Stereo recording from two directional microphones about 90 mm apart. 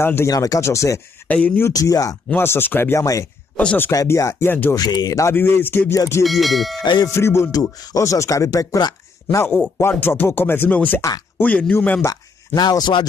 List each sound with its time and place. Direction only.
0.0 s speech: 25° left (ahead or behind)
0.3 s speech: 40° left (ahead or behind)
1.2 s a sound: 15° left (ahead or behind)
1.7 s speech: 40° left (ahead or behind)
2.3 s speech: 25° left (ahead or behind)
3.9 s speech: 40° left (ahead or behind); by 4.7 s 25° left (ahead or behind)
4.7 s speech: 45° left (ahead or behind)
5.3 s speech: 25° left (ahead or behind)
6.2 s speech: centre (ahead or behind)
6.8 s ding: 55° left (ahead or behind)
7.1 s speech: 30° left (ahead or behind)
9.8 s speech: 25° left (ahead or behind)
12.5 s speech: 50° left (ahead or behind)